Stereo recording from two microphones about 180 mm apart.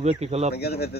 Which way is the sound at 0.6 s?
60° left (ahead or behind).